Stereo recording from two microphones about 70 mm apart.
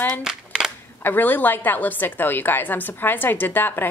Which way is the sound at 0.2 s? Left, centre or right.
Centre.